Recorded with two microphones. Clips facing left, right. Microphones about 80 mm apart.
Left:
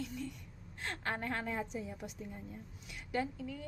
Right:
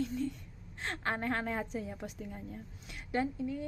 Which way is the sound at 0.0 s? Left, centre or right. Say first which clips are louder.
Right 7 dB; right.